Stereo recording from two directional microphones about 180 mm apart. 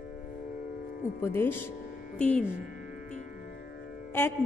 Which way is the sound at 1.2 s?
10° left (ahead or behind).